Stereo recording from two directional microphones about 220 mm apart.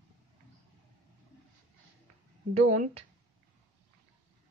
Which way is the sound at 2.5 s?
35° right (ahead or behind).